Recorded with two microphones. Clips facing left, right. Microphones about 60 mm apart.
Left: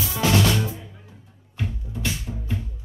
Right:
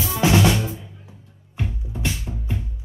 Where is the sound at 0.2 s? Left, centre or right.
Right.